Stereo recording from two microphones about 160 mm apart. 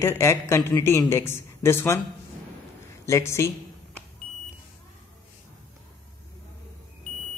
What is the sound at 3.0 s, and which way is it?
Speech, 15° left (ahead or behind).